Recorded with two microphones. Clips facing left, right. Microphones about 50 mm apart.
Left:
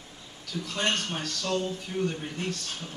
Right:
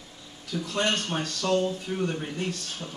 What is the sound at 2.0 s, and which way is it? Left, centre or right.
Speech, centre.